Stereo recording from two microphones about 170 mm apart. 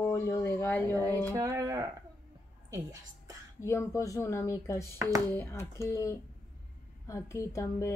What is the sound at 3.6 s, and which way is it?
A woman's voice, 15° left (ahead or behind).